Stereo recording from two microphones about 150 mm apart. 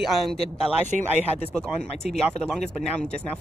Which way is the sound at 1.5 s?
5° left (ahead or behind).